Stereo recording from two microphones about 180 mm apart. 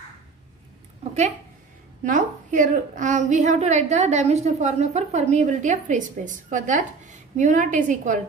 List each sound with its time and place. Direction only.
2.0 s a woman's voice: 45° right (ahead or behind)